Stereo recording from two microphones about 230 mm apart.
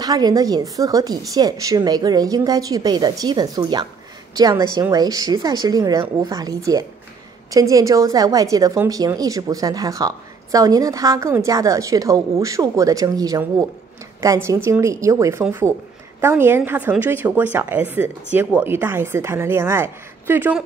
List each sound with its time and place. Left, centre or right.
0.0 s a woman's voice: centre